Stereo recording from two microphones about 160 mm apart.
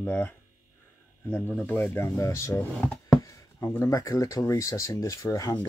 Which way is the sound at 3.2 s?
20° left (ahead or behind).